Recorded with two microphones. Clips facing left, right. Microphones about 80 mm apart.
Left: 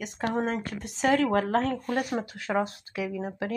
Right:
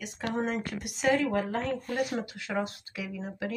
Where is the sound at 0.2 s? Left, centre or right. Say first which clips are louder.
Left 3 dB; left.